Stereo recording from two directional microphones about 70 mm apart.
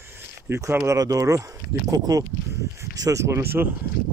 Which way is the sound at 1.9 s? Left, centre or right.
Right.